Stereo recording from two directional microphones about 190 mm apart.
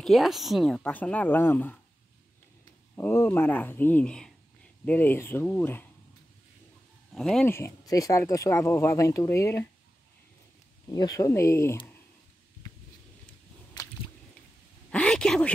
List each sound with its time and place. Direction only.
0.0 s speech: centre (ahead or behind)
3.0 s speech: 10° left (ahead or behind)
7.2 s speech: centre (ahead or behind)
7.5 s speech: 15° left (ahead or behind)
10.9 s speech: 20° left (ahead or behind)
13.8 s squish: 15° left (ahead or behind)
14.9 s a sound: 5° left (ahead or behind)